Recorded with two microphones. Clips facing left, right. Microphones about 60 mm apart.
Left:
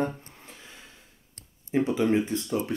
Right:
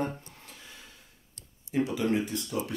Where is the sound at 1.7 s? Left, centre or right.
Left.